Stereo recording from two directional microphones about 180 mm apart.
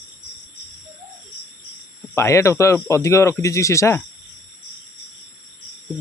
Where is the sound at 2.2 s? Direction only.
15° left (ahead or behind).